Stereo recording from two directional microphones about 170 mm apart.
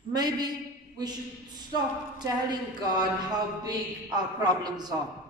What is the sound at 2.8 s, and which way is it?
Speech, 25° right (ahead or behind).